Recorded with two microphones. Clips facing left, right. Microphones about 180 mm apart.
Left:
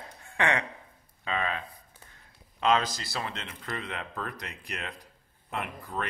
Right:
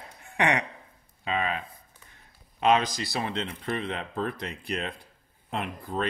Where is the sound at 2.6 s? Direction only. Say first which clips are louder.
Right 3 dB; 15° right (ahead or behind).